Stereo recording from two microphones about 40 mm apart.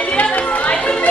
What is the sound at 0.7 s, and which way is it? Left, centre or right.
Music, left.